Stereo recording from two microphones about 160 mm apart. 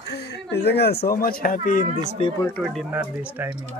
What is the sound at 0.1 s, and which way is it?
Speech, 90° left.